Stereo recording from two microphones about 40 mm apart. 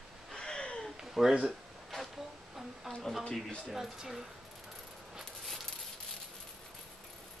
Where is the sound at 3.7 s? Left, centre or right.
Centre.